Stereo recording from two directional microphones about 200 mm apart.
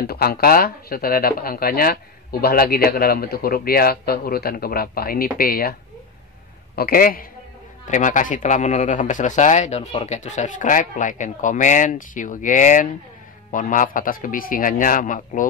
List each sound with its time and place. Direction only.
0.0 s a man's voice: 50° left (ahead or behind)